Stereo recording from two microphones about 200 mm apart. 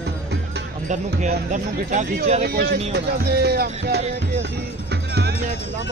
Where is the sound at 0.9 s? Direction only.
40° right (ahead or behind).